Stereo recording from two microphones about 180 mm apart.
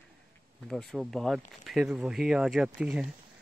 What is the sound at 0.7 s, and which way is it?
Speech, centre (ahead or behind).